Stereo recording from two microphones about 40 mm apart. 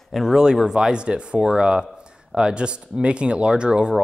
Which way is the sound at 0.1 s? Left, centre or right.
Centre.